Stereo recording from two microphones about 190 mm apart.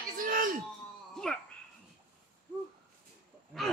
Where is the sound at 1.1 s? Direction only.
5° left (ahead or behind).